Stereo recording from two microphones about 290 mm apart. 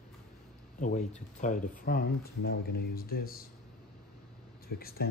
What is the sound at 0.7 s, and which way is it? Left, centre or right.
Speech, left.